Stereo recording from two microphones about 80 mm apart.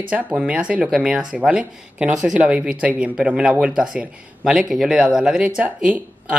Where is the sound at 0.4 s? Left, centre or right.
Centre.